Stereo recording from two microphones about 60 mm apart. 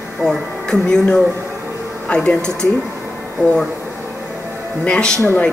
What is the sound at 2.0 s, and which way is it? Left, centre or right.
Speech, centre.